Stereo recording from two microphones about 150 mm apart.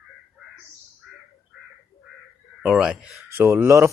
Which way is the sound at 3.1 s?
20° right (ahead or behind).